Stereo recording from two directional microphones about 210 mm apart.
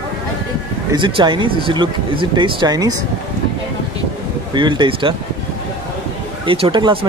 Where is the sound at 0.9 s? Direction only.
20° right (ahead or behind).